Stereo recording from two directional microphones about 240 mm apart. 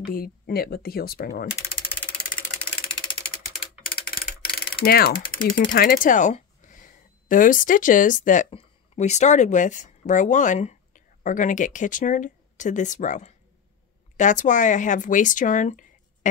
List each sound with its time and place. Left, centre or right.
0.0 s speech: left
4.7 s speech: left